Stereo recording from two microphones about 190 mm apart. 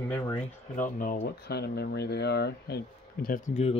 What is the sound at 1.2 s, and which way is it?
Speech, 60° left (ahead or behind).